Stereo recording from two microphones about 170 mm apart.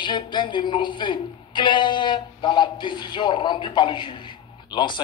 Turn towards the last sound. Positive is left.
turn(degrees=25)  # may be behind; listen again after turning